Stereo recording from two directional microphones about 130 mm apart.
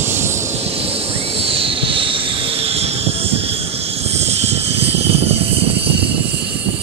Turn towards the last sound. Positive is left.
turn(degrees=-50)  # may be behind; listen again after turning